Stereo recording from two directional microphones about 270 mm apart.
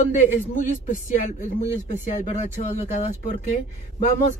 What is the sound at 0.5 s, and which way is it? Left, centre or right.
Speech, left.